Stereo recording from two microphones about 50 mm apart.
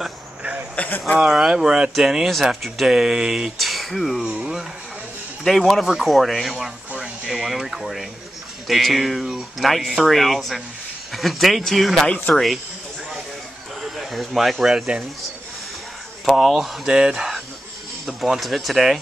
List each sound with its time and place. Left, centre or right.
0.8 s speech: left
1.1 s speech: centre
2.0 s speech: centre
3.5 s speech: centre
5.4 s speech: centre
13.8 s speech: centre
16.3 s speech: centre
16.8 s speech: centre
18.0 s speech: centre